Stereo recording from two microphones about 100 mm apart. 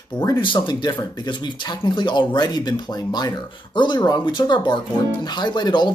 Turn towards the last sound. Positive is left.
turn(degrees=50)  # may be behind; listen again after turning